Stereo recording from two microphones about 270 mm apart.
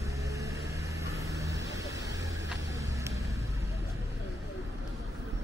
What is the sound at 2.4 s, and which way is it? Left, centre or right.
Vehicle, right.